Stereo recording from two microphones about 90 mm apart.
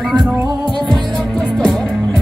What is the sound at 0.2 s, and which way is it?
Music, centre (ahead or behind).